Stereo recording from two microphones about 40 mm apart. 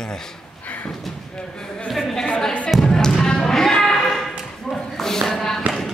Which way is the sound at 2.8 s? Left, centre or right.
Centre.